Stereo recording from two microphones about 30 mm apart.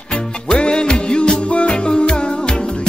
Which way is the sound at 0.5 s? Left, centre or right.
Left.